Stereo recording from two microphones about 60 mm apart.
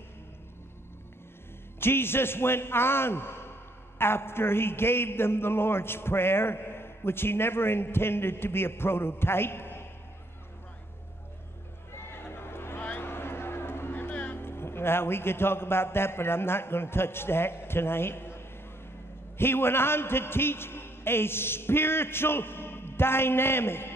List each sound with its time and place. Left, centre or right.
1.8 s a man's voice: left
12.1 s a sound: left
12.8 s music: left
19.3 s a man's voice: left